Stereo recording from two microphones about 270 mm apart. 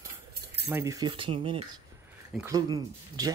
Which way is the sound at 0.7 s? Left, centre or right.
Centre.